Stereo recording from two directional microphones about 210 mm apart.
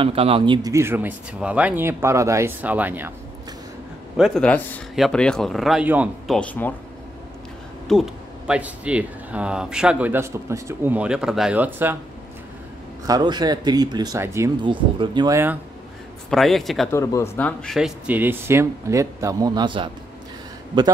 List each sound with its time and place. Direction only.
0.0 s speech: 25° right (ahead or behind); by 3.1 s 10° right (ahead or behind)
4.2 s speech: 5° left (ahead or behind)
7.9 s speech: 5° right (ahead or behind)
13.0 s speech: 20° right (ahead or behind)
16.3 s speech: centre (ahead or behind)
16.9 s speech: 15° left (ahead or behind); by 19.9 s 20° right (ahead or behind)